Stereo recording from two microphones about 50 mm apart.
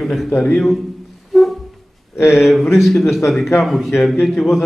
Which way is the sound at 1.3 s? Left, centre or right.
Centre.